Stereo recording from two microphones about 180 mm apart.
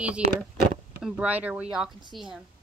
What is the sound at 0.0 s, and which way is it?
A woman's voice, 5° right (ahead or behind).